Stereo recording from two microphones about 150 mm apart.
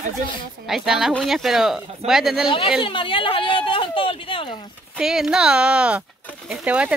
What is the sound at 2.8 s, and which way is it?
Speech, 35° left (ahead or behind).